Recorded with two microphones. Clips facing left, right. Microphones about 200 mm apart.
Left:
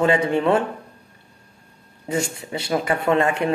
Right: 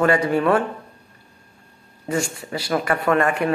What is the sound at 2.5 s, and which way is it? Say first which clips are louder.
Speech: even; 20° left (ahead or behind).